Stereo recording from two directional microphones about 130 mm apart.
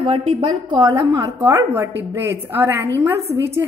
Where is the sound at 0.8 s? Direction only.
25° right (ahead or behind).